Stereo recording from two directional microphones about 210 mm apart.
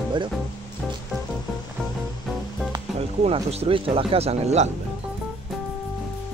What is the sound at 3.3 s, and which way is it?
Speech, 30° right (ahead or behind).